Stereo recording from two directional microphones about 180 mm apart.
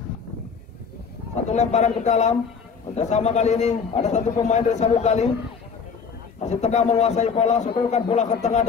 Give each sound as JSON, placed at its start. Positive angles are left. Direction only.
{"t": 1.5, "sound": "a man's voice", "side_deg": 40}
{"t": 6.4, "sound": "a man's voice", "side_deg": 40}